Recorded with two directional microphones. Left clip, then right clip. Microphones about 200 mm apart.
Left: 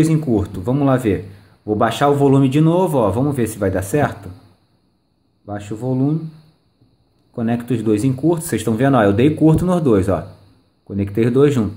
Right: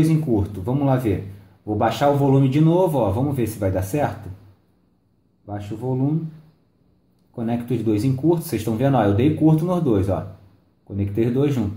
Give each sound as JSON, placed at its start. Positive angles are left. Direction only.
{"t": 0.0, "sound": "a man's voice", "side_deg": 50}
{"t": 5.5, "sound": "a man's voice", "side_deg": 50}
{"t": 7.3, "sound": "a man's voice", "side_deg": 45}